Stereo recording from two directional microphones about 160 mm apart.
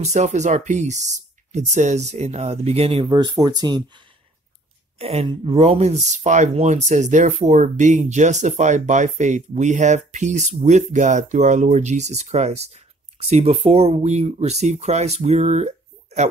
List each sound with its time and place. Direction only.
0.0 s speech: 45° right (ahead or behind); by 4.0 s 25° right (ahead or behind)
4.9 s speech: 40° right (ahead or behind)